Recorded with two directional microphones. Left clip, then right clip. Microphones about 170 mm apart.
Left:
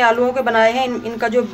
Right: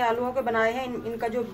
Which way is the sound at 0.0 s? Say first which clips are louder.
Left 10 dB; 25° left (ahead or behind).